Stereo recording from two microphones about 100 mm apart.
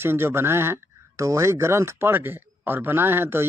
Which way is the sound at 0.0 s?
25° right (ahead or behind).